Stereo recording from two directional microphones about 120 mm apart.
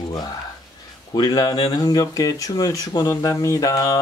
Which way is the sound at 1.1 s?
35° left (ahead or behind).